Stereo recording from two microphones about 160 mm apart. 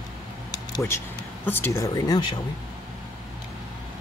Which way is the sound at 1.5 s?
15° left (ahead or behind).